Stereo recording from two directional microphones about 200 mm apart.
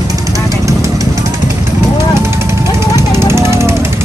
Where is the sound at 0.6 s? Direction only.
15° right (ahead or behind).